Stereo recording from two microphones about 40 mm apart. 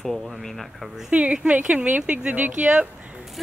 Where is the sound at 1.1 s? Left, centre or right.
Right.